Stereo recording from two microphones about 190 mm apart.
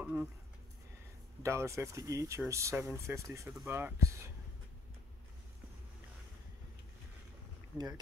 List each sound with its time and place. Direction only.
0.0 s speech: 5° right (ahead or behind)
1.4 s speech: 15° right (ahead or behind)